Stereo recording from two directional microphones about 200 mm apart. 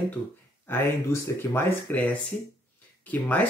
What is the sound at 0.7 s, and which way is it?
Speech, 10° left (ahead or behind).